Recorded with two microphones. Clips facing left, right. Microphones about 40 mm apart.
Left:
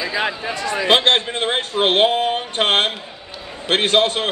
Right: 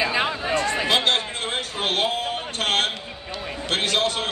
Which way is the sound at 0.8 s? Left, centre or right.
Left.